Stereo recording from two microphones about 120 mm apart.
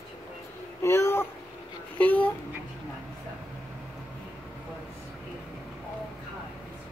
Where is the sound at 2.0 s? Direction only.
15° left (ahead or behind).